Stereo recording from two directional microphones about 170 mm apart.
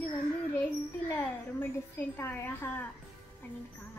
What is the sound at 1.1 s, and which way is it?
A child's voice, 10° left (ahead or behind).